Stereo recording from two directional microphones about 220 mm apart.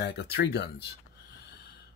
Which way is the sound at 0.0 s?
50° left (ahead or behind).